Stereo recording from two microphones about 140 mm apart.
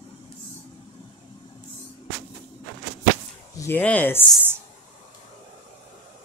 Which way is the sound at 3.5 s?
15° left (ahead or behind).